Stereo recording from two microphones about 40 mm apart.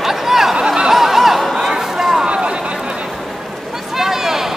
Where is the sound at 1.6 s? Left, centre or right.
Centre.